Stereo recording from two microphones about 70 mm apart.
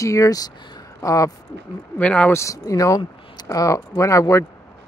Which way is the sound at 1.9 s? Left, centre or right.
Centre.